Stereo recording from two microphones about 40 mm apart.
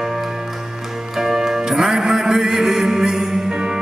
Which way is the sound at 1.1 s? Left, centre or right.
Centre.